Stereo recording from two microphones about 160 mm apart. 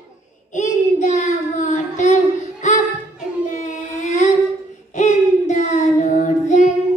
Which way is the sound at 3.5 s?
50° left (ahead or behind).